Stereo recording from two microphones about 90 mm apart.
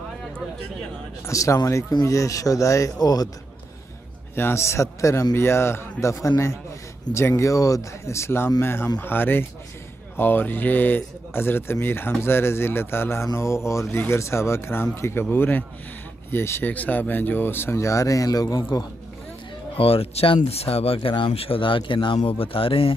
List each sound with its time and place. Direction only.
1.2 s a man's voice: 35° left (ahead or behind)
4.4 s a man's voice: 30° left (ahead or behind); by 18.7 s 45° left (ahead or behind)
19.8 s speech: 90° left